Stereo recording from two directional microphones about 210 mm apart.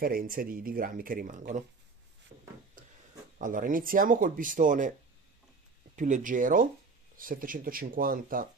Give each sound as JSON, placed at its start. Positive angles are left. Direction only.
{"t": 0.0, "sound": "speech", "side_deg": -40}
{"t": 3.3, "sound": "speech", "side_deg": -40}
{"t": 5.9, "sound": "speech", "side_deg": -35}